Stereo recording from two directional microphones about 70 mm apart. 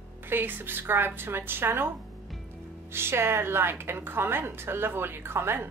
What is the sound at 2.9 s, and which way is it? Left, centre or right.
A woman's voice, right.